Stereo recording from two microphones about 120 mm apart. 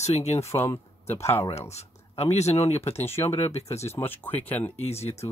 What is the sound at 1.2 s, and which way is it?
Speech, 60° left (ahead or behind).